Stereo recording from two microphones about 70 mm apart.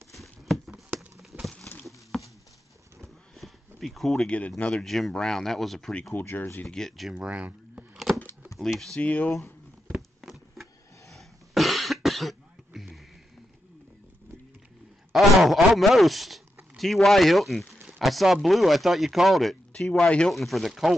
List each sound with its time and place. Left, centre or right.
0.1 s a sound: centre
1.9 s patter: centre
3.0 s power windows: centre
4.6 s speech: centre
4.8 s speech: centre
6.1 s speech: left
6.6 s speech: centre
7.2 s a sound: centre
8.9 s speech: left
9.9 s a sound: centre
15.1 s a sound: centre
16.7 s speech: centre
19.7 s speech: centre
20.3 s speech: centre